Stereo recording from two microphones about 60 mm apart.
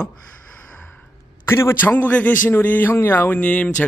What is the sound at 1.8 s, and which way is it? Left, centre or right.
Speech, left.